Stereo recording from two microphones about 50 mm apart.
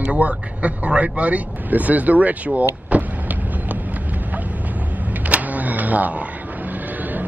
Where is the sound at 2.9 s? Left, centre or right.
Right.